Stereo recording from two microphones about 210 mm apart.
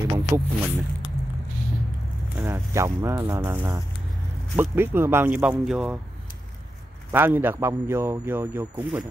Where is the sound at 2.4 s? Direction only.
15° right (ahead or behind).